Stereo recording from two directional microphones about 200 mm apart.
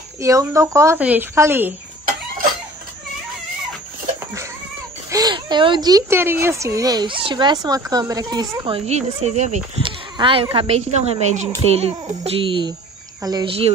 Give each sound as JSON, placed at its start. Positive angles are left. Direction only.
{"t": 0.2, "sound": "a woman's voice", "side_deg": -15}
{"t": 5.1, "sound": "speech", "side_deg": -20}